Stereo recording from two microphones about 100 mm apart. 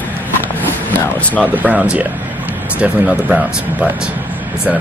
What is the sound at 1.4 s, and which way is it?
Speech, 15° right (ahead or behind).